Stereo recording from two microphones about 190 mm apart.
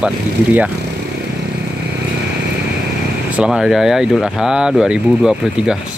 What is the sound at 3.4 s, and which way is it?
Speech, centre (ahead or behind).